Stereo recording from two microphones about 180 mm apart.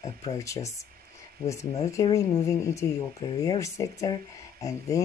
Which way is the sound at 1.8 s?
20° left (ahead or behind).